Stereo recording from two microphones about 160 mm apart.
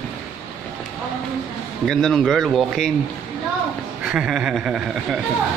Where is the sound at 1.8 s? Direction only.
Centre (ahead or behind).